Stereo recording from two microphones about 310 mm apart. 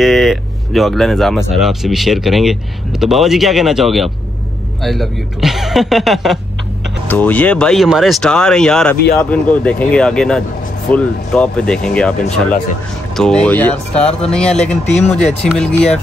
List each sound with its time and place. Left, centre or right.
0.0 s speech: centre
15.0 s speech: left
15.2 s speech: centre